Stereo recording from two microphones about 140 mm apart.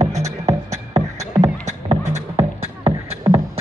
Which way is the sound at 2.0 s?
55° right (ahead or behind).